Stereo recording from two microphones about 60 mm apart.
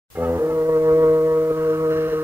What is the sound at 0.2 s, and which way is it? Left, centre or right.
Foghorn, right.